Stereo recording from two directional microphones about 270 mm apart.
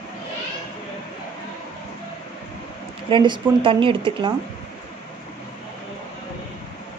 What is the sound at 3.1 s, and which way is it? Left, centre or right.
Speech, centre.